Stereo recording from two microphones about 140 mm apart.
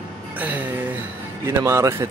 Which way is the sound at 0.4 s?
10° right (ahead or behind).